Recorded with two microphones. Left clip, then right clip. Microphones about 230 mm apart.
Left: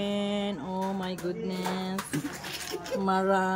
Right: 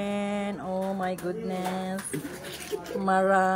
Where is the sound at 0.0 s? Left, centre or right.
Centre.